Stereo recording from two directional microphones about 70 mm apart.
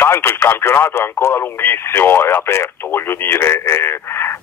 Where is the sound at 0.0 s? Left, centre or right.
Left.